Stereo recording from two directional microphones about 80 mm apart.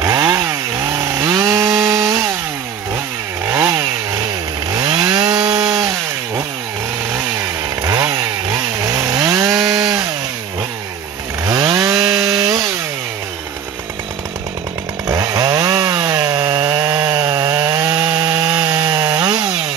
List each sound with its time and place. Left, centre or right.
0.0 s chainsaw: right
3.4 s chainsaw: right
4.7 s chainsaw: right
7.8 s chainsaw: right
11.4 s chainsaw: right
15.3 s chainsaw: right